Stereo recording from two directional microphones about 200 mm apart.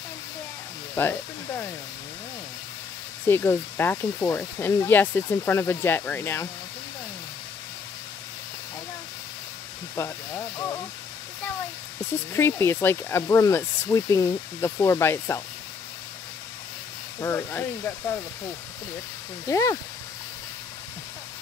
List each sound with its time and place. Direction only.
1.0 s speech: 10° left (ahead or behind)
3.3 s speech: 10° left (ahead or behind)
9.9 s speech: 15° left (ahead or behind)
12.3 s speech: 10° left (ahead or behind)
17.2 s speech: 10° left (ahead or behind)
19.4 s speech: 15° left (ahead or behind)